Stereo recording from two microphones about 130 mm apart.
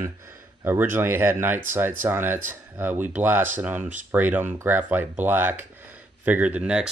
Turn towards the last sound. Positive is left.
turn(degrees=-10)  # may be behind; listen again after turning